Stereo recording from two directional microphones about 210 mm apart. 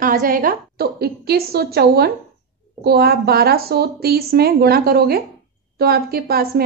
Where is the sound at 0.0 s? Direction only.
45° right (ahead or behind).